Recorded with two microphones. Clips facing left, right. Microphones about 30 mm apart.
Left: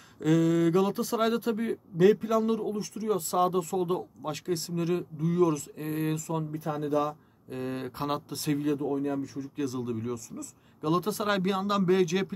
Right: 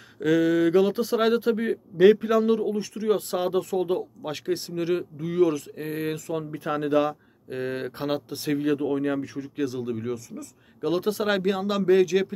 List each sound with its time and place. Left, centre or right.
0.2 s speech: centre
3.5 s speech: centre
6.5 s speech: right
7.1 s speech: right
7.9 s speech: centre
8.7 s speech: right
9.6 s speech: centre